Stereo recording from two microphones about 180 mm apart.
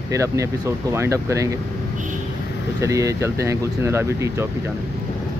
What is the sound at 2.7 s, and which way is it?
Speech, 15° right (ahead or behind).